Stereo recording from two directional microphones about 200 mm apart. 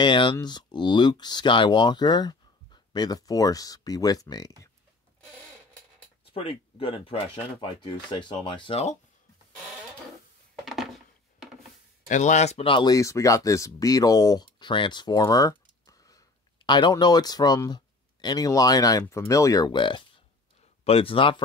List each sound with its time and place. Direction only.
0.0 s speech: 25° left (ahead or behind)
6.3 s speech: 25° left (ahead or behind)
10.6 s a sound: centre (ahead or behind)
12.1 s speech: 35° left (ahead or behind)